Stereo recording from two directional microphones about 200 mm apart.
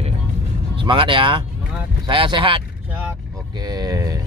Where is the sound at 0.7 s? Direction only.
25° right (ahead or behind).